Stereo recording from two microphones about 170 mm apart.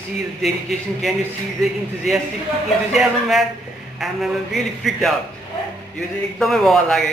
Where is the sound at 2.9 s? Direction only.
Centre (ahead or behind).